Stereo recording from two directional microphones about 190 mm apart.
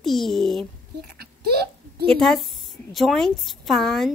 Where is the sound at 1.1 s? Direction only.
55° right (ahead or behind).